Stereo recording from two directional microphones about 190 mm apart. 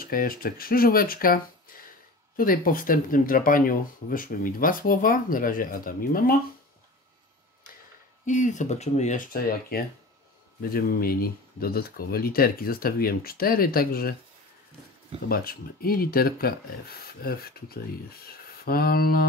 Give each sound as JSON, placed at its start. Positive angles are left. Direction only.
{"t": 0.0, "sound": "speech", "side_deg": 50}
{"t": 8.3, "sound": "speech", "side_deg": 40}
{"t": 15.2, "sound": "speech", "side_deg": 50}